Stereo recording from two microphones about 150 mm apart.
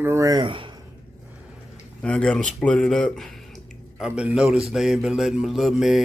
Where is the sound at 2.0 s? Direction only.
5° left (ahead or behind).